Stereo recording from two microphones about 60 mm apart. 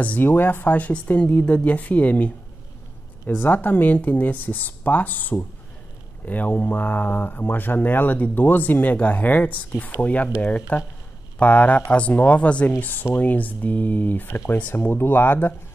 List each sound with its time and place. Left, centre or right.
0.0 s speech: left
12.8 s speech: left